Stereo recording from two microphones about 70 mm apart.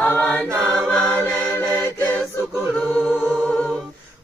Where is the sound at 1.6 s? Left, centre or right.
Right.